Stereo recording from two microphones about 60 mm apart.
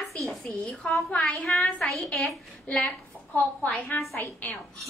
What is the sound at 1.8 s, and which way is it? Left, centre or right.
Speech, centre.